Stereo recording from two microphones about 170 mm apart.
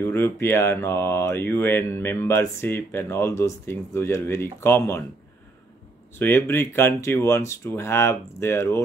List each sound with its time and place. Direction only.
0.0 s speech: 15° left (ahead or behind)
6.1 s speech: 15° left (ahead or behind)